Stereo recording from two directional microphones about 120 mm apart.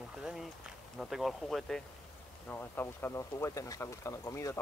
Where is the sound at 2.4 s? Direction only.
15° left (ahead or behind).